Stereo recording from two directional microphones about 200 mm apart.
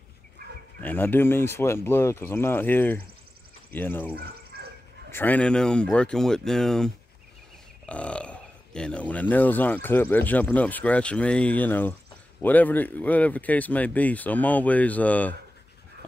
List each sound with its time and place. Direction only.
0.7 s speech: 10° left (ahead or behind)
4.2 s a sound: 50° right (ahead or behind)
5.1 s speech: 10° left (ahead or behind)